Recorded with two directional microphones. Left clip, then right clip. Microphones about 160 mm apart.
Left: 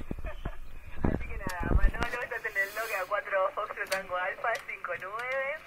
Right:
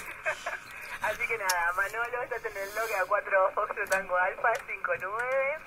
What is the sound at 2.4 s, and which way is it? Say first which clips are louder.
Radio: left 1 dB; 15° right (ahead or behind).